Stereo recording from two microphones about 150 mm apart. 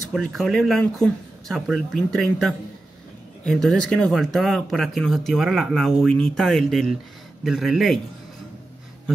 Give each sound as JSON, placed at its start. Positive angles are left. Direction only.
{"t": 0.1, "sound": "speech", "side_deg": 0}